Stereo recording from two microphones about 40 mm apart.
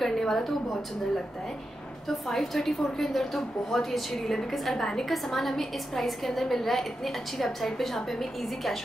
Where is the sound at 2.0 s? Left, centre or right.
Centre.